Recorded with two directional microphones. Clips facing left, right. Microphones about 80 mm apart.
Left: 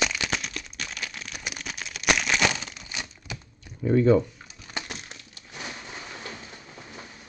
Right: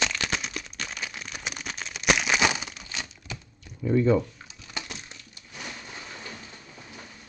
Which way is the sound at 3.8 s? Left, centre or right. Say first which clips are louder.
Left 2 dB; left.